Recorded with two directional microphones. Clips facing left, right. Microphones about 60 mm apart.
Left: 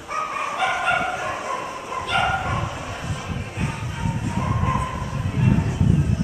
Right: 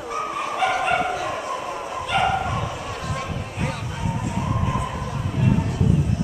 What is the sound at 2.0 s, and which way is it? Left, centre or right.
Dog, centre.